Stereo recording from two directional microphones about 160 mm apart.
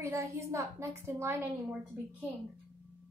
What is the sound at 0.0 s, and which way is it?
A woman's voice, 20° right (ahead or behind).